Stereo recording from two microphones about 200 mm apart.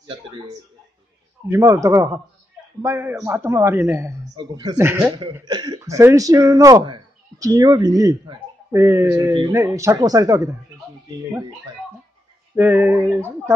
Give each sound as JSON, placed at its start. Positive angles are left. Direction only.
{"t": 1.5, "sound": "speech", "side_deg": -15}
{"t": 12.5, "sound": "speech", "side_deg": -10}